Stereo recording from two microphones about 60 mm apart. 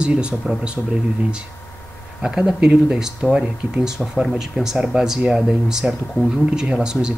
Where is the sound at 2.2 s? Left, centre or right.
Centre.